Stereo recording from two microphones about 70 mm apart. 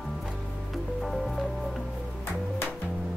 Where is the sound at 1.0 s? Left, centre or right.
Centre.